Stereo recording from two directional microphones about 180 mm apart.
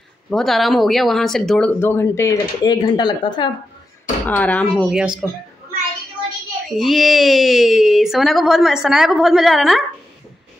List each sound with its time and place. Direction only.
0.3 s speech: centre (ahead or behind)
1.8 s speech: 15° left (ahead or behind)
4.3 s speech: 10° left (ahead or behind)
4.9 s speech: 5° right (ahead or behind)
6.8 s speech: centre (ahead or behind)